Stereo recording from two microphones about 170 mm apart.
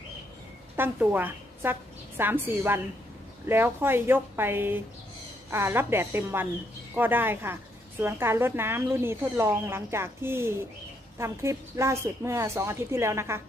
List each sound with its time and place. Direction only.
0.7 s a woman's voice: 10° right (ahead or behind)